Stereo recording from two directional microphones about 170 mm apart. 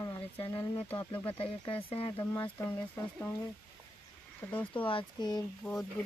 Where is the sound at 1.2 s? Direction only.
30° left (ahead or behind).